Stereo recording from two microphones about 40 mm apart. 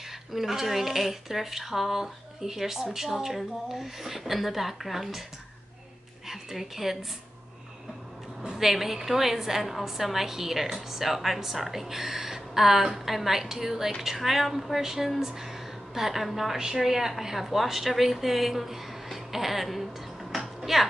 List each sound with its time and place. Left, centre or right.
0.3 s a woman's voice: centre
6.2 s a woman's voice: centre
8.4 s a sound: centre
8.6 s a woman's voice: centre